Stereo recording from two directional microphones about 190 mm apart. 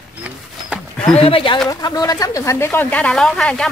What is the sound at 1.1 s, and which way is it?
Speech, 30° left (ahead or behind).